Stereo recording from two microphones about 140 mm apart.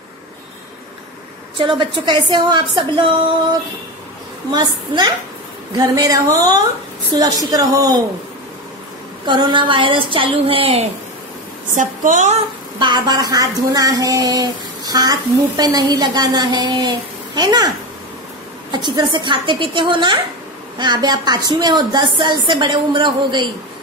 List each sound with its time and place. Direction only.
1.6 s speech: 35° right (ahead or behind)
4.5 s speech: 30° right (ahead or behind)
9.2 s speech: 30° right (ahead or behind)
11.7 s a woman's voice: 65° right (ahead or behind)
12.7 s speech: 30° right (ahead or behind)
18.7 s speech: 30° right (ahead or behind)